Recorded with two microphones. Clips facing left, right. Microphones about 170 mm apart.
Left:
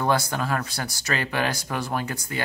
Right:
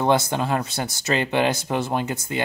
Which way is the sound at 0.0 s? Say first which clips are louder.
Right 4 dB; 20° right (ahead or behind).